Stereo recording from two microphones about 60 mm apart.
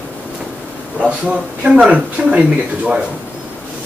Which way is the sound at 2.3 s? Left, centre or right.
Centre.